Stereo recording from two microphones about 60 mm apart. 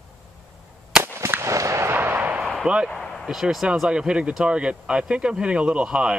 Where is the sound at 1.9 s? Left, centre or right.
Right.